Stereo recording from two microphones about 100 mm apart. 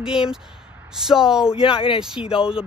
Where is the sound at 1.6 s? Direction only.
60° left (ahead or behind).